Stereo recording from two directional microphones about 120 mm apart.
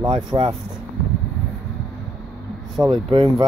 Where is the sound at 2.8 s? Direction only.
20° right (ahead or behind).